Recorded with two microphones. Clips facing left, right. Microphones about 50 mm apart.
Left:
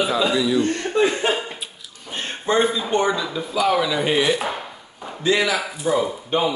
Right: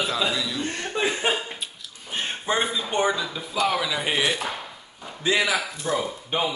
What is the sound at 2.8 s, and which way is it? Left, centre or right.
Speech, centre.